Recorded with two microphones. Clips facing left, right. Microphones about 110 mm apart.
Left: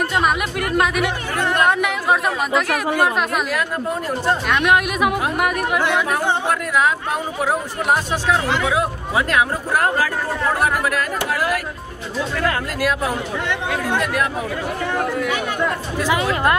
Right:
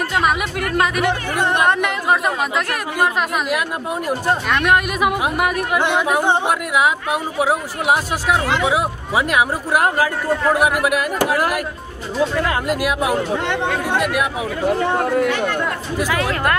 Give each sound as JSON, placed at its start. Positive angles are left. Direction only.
{"t": 0.1, "sound": "speech", "side_deg": 0}
{"t": 1.3, "sound": "speech", "side_deg": -15}
{"t": 1.7, "sound": "speech", "side_deg": 0}
{"t": 3.4, "sound": "speech", "side_deg": -10}
{"t": 4.5, "sound": "speech", "side_deg": 0}
{"t": 5.8, "sound": "speech", "side_deg": -20}
{"t": 8.5, "sound": "speech", "side_deg": -20}
{"t": 12.4, "sound": "speech", "side_deg": -15}
{"t": 14.8, "sound": "speech", "side_deg": -30}
{"t": 15.2, "sound": "speech", "side_deg": 10}